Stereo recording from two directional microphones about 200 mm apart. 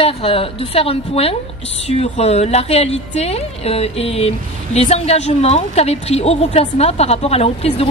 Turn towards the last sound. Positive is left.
turn(degrees=30)  # may be behind; listen again after turning